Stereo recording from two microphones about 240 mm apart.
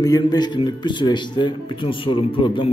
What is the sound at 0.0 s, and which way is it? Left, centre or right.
A man's voice, centre.